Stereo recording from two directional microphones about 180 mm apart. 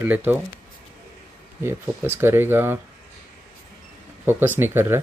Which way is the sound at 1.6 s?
15° right (ahead or behind).